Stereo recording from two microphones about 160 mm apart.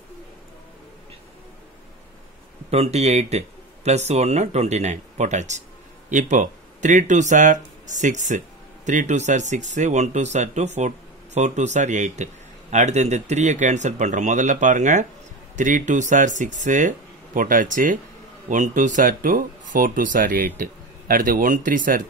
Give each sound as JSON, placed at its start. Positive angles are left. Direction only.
{"t": 2.7, "sound": "speech", "side_deg": -40}